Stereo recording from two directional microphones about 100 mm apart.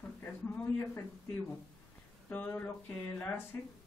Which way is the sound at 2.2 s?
20° left (ahead or behind).